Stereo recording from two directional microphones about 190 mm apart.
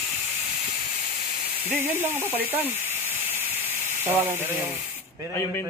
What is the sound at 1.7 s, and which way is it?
Speech, 10° right (ahead or behind).